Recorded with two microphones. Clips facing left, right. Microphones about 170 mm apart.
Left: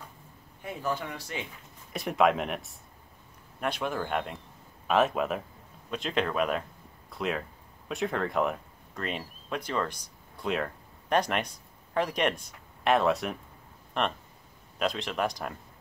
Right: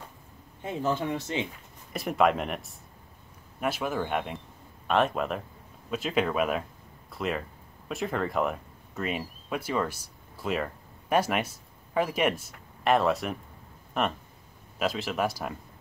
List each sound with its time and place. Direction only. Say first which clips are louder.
0.6 s speech: right 4 dB; 25° right (ahead or behind)
1.9 s speech: even; centre (ahead or behind)